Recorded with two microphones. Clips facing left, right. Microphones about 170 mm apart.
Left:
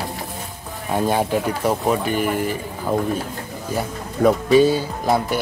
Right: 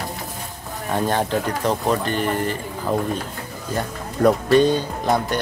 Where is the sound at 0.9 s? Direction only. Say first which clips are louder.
Left 2 dB; 10° left (ahead or behind).